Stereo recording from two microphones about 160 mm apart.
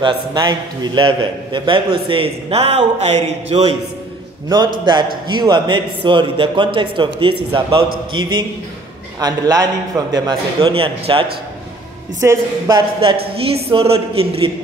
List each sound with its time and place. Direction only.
0.0 s a man's voice: 25° right (ahead or behind)
5.3 s a man's voice: 25° right (ahead or behind)
10.6 s a man's voice: 35° right (ahead or behind)
12.2 s a man's voice: 20° right (ahead or behind)
13.5 s a man's voice: 35° right (ahead or behind)